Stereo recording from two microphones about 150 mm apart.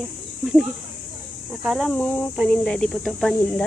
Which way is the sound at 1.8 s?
10° left (ahead or behind).